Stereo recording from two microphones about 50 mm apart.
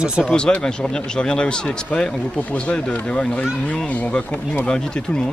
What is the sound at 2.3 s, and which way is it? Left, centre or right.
Speech, left.